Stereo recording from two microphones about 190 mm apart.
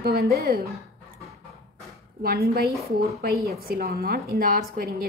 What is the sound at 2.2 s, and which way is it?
Speech, 55° right (ahead or behind).